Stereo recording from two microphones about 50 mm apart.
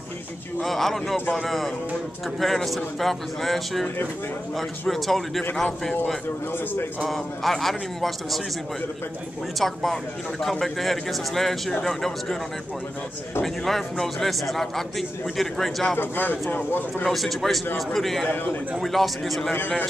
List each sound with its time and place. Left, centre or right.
0.6 s a man's voice: centre
9.6 s a man's voice: centre
13.4 s a man's voice: centre
16.0 s a man's voice: left
17.0 s a man's voice: centre
18.3 s a man's voice: left
18.8 s a man's voice: centre